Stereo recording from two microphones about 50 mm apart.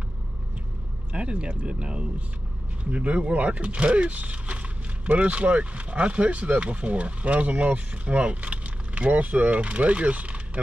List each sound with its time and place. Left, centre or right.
1.1 s speech: right